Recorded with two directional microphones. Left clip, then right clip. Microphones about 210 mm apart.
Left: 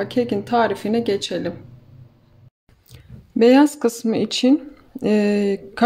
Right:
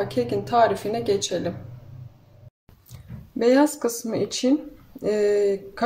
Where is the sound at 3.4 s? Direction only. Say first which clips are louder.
Left 5 dB; 35° left (ahead or behind).